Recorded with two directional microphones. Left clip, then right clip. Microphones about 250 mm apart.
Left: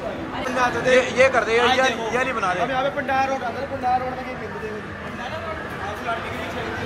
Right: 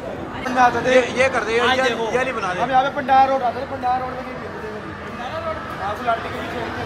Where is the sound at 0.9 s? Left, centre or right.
Centre.